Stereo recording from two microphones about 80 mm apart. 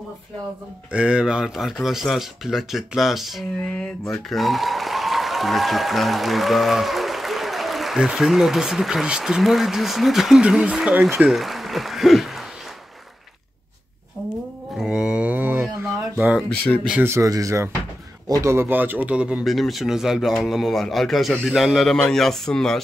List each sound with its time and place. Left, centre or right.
0.9 s speech: centre
3.5 s music: centre
4.3 s speech: centre
10.4 s speech: centre
15.0 s mantra: centre
16.2 s speech: centre
16.4 s music: centre
17.0 s speech: right
17.3 s speech: right; by 19.4 s centre
19.4 s speech: centre